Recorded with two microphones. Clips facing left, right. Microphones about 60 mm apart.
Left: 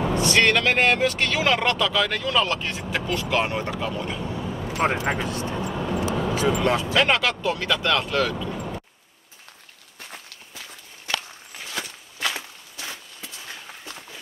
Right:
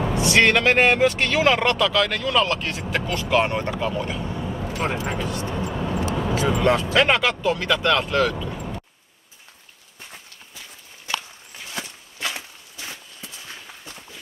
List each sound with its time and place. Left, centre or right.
0.0 s speech: centre
3.8 s vehicle: centre
4.7 s speech: left
5.5 s speech: centre
8.5 s a sound: centre